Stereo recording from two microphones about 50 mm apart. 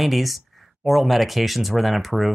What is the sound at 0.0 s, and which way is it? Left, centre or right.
Speech, centre.